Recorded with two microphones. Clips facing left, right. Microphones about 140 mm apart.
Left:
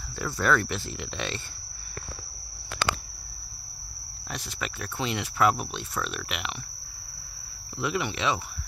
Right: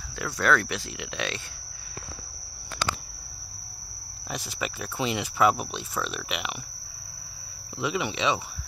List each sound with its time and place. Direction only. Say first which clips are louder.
0.2 s speech: right 1 dB; centre (ahead or behind)
2.8 s a sound: left 2 dB; 60° left (ahead or behind)
4.3 s speech: right 3 dB; 5° right (ahead or behind)
7.8 s speech: right 1 dB; centre (ahead or behind)